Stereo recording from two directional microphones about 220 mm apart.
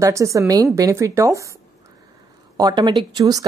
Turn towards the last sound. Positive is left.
turn(degrees=-20)  # may be behind; listen again after turning